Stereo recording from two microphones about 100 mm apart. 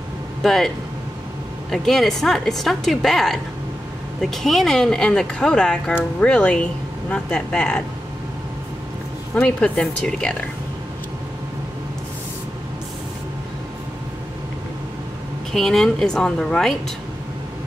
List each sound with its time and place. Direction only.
0.4 s speech: centre (ahead or behind)
1.7 s speech: 5° left (ahead or behind)
9.3 s speech: 10° left (ahead or behind)
15.5 s speech: 5° left (ahead or behind)